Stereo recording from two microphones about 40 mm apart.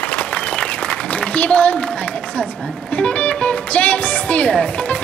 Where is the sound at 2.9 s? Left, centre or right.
Left.